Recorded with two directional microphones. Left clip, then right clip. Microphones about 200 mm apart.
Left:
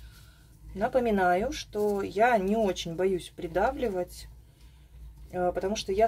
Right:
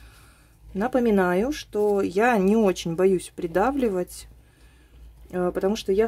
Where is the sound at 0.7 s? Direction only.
60° right (ahead or behind).